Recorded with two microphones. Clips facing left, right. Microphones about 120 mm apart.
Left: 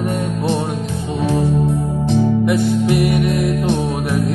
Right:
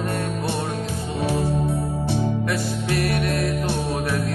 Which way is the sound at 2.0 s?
15° left (ahead or behind).